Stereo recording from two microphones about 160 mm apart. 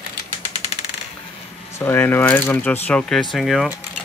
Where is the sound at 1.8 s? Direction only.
15° left (ahead or behind).